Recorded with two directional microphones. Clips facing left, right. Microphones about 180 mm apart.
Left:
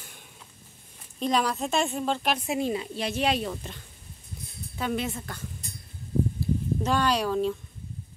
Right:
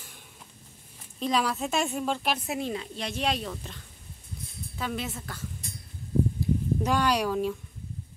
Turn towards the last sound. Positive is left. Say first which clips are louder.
# left 1 dB
turn(degrees=-10)  # may be behind; listen again after turning